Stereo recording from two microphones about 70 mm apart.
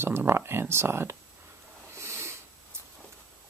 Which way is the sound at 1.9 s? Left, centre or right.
Right.